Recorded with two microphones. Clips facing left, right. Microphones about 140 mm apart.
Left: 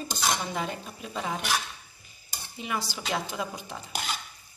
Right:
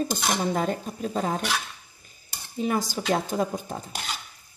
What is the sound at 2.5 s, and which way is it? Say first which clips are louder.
Speech: right 8 dB; 40° right (ahead or behind).